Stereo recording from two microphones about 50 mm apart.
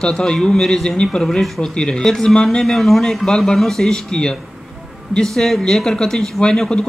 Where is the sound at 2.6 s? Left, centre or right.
Centre.